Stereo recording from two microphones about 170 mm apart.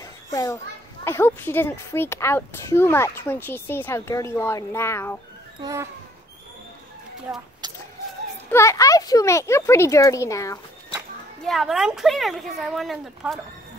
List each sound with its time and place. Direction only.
0.0 s children playing: 20° left (ahead or behind)
1.0 s speech: 15° left (ahead or behind)
5.6 s speech: 20° right (ahead or behind)
7.6 s chicken: 25° right (ahead or behind)
8.5 s speech: 15° left (ahead or behind)
11.4 s speech: centre (ahead or behind)